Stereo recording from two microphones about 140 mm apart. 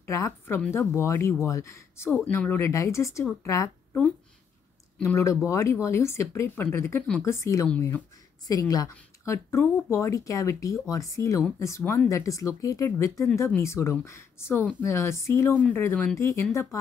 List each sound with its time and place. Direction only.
0.0 s a woman's voice: 20° left (ahead or behind)
5.0 s a woman's voice: 20° left (ahead or behind)
8.5 s a woman's voice: 25° left (ahead or behind)